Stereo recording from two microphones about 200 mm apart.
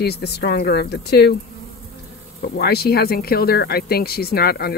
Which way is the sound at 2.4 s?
55° left (ahead or behind).